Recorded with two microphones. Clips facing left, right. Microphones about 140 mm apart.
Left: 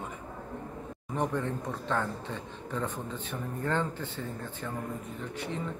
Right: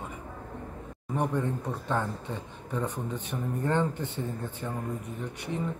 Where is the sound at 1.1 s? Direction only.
10° right (ahead or behind).